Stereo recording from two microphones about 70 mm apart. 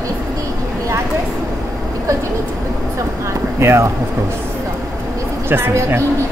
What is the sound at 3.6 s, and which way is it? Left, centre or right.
Speech, right.